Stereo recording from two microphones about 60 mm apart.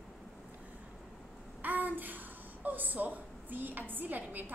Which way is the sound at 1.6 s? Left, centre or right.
Right.